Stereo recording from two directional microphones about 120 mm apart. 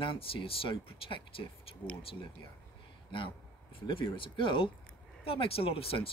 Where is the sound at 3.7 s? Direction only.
45° left (ahead or behind).